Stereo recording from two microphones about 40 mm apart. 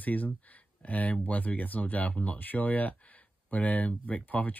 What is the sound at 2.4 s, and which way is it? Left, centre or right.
Speech, left.